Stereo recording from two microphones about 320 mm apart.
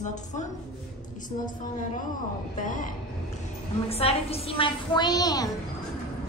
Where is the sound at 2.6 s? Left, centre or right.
Left.